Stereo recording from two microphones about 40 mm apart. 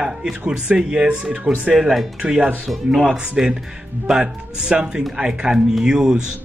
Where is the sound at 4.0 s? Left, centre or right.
Right.